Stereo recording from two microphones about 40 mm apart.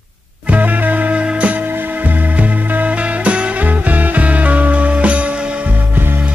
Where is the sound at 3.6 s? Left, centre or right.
Right.